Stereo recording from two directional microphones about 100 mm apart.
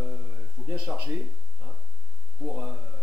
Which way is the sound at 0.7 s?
15° right (ahead or behind).